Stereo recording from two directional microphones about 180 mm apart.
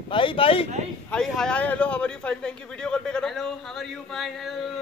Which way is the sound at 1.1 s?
5° left (ahead or behind).